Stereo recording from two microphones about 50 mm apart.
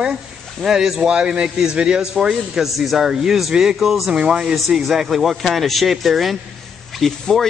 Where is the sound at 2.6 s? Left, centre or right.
Centre.